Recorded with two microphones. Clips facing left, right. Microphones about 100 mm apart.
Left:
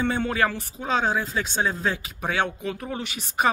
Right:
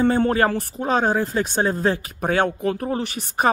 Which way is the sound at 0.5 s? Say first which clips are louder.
Right 5 dB; 55° right (ahead or behind).